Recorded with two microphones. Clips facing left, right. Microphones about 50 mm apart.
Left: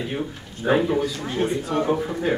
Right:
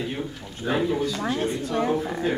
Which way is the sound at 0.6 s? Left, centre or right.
Left.